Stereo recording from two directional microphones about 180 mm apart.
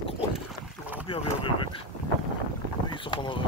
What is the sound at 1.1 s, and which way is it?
Boat, 30° left (ahead or behind).